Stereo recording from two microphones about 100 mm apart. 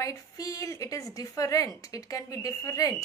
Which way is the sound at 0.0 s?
35° left (ahead or behind).